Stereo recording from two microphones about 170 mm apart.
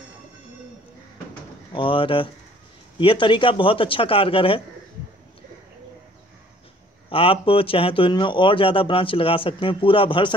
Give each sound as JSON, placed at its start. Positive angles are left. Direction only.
{"t": 1.7, "sound": "speech", "side_deg": 30}
{"t": 7.1, "sound": "speech", "side_deg": 30}